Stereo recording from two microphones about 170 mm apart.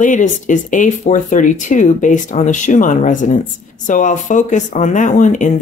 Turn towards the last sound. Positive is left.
turn(degrees=45)  # may be behind; listen again after turning